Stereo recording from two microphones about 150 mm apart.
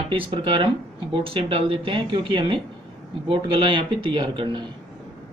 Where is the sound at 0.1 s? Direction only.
35° right (ahead or behind).